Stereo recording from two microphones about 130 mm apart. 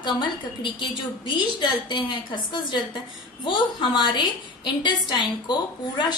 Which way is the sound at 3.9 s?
35° left (ahead or behind).